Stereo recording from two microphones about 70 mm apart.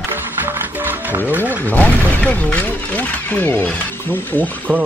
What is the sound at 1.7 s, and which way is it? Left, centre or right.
Speech, left.